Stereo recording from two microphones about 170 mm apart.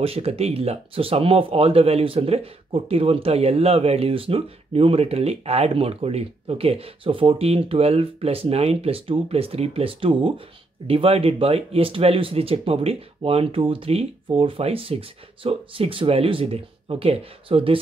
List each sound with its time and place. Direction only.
0.0 s speech: 35° right (ahead or behind)